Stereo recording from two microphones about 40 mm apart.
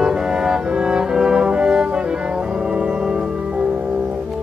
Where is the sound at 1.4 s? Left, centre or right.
Right.